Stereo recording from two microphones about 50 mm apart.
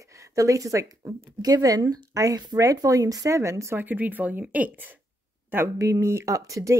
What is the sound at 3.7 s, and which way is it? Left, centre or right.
Speech, right.